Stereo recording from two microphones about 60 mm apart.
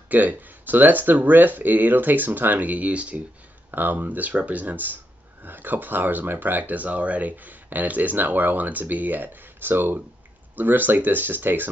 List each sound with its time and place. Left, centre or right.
0.1 s speech: right
3.7 s speech: right